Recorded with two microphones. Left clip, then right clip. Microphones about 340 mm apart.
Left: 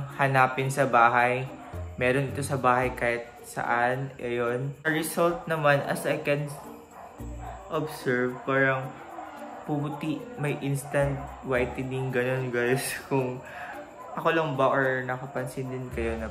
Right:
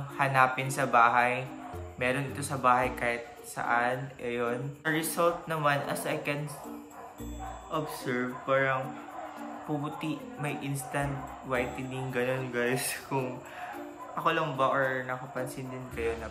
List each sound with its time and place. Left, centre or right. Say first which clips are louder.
0.2 s a man's voice: left 2 dB; centre
7.7 s a man's voice: left 5 dB; centre
9.9 s a man's voice: left 3 dB; centre